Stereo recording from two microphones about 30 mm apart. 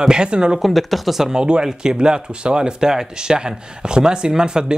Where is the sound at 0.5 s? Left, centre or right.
Centre.